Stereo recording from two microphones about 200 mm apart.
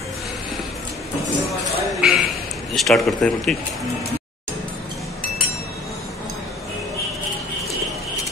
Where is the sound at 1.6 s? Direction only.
Centre (ahead or behind).